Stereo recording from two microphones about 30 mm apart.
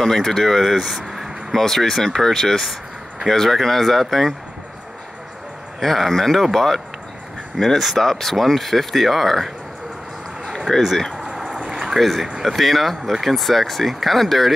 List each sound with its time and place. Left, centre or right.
0.0 s speech: centre
0.9 s a sound: centre
1.5 s speech: centre
5.8 s speech: centre
10.7 s speech: left
12.0 s speech: centre